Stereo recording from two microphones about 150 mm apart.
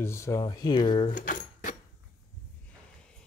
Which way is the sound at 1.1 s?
60° left (ahead or behind).